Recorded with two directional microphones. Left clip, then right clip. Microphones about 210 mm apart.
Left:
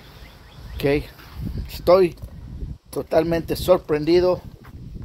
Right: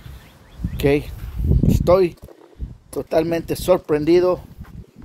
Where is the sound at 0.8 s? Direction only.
40° right (ahead or behind).